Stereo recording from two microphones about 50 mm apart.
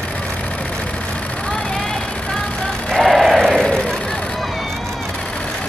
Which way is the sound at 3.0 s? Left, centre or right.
Centre.